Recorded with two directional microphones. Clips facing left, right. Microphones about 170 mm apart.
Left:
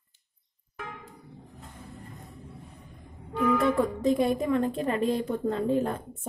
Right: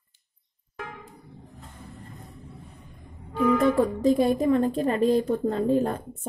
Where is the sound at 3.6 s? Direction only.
35° right (ahead or behind).